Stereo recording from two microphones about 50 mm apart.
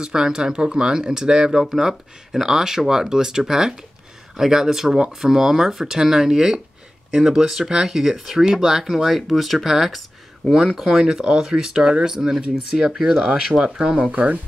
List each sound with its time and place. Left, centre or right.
0.0 s speech: centre